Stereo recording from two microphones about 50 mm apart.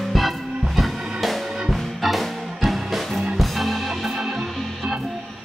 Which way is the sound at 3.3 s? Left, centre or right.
Centre.